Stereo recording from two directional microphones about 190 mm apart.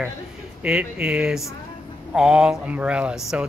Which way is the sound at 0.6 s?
5° right (ahead or behind).